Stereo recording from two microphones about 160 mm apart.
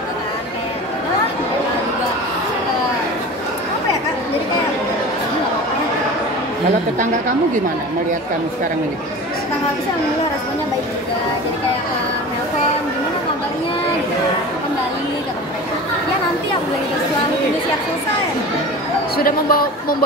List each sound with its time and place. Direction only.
19.1 s speech: 65° left (ahead or behind)